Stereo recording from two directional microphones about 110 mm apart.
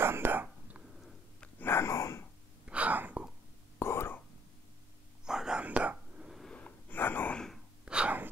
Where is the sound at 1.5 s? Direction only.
20° left (ahead or behind).